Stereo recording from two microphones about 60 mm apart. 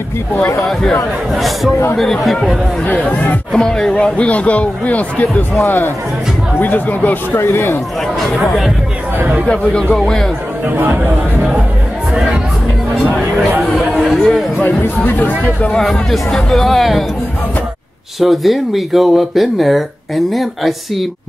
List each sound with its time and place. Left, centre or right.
2.0 s speech: centre
2.8 s speech: left
3.5 s a man's voice: centre
5.6 s a man's voice: left
7.3 s a man's voice: left
8.4 s speech: centre
9.5 s a man's voice: centre
13.6 s speech: centre
15.0 s speech: left
15.8 s speech: centre
18.2 s speech: centre